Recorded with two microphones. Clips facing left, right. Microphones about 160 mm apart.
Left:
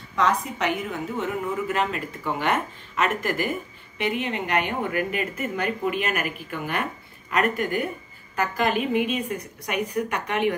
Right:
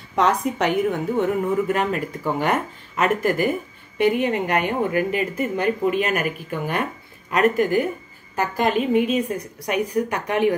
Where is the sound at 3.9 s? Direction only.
45° right (ahead or behind).